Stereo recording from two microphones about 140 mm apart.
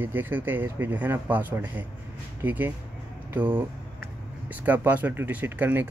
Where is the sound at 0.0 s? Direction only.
15° right (ahead or behind).